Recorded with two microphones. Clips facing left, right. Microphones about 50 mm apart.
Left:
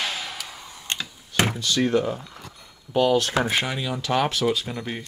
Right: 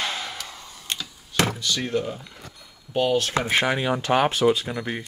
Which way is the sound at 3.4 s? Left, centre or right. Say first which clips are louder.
Right 4 dB; right.